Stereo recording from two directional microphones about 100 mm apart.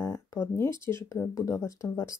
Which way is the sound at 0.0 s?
30° left (ahead or behind).